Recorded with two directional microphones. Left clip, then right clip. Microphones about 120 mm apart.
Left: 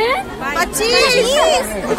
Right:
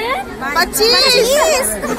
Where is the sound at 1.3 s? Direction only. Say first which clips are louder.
Right 1 dB; 35° right (ahead or behind).